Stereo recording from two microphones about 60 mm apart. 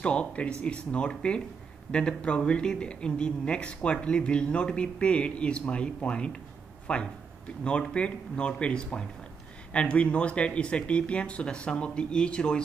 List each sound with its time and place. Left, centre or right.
0.0 s speech: left